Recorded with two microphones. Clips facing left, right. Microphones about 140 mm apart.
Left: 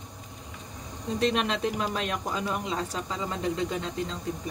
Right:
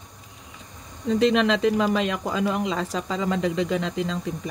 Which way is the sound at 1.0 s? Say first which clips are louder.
Right 7 dB; 90° right.